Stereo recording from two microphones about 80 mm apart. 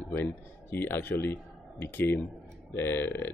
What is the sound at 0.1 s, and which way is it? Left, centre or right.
Speech, left.